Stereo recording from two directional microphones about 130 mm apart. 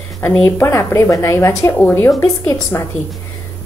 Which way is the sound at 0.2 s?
20° left (ahead or behind).